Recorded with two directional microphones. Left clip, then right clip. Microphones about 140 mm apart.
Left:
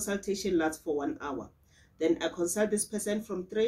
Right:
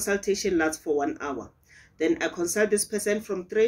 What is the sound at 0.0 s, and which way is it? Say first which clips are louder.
A man's voice: right 7 dB; 25° left (ahead or behind).